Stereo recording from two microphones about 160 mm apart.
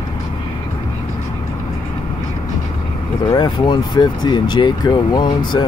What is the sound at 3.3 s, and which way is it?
Speech, 30° left (ahead or behind).